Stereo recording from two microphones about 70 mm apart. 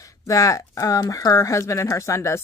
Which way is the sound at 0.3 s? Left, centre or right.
Left.